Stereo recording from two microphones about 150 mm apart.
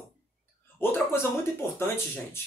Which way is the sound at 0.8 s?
15° left (ahead or behind).